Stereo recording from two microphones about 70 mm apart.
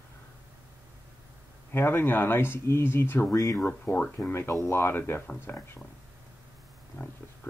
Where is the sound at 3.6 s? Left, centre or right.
Left.